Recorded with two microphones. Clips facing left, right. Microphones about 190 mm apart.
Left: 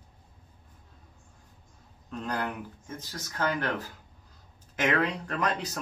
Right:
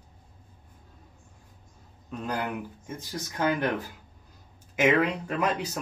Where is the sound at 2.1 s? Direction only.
5° right (ahead or behind).